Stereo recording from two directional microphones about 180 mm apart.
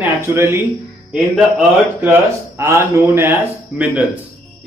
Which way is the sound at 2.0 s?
15° right (ahead or behind).